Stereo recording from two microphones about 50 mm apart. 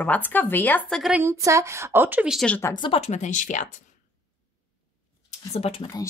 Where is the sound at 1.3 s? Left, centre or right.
Right.